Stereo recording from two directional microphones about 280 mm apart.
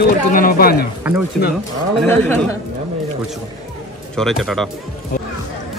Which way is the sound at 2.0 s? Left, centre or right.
Centre.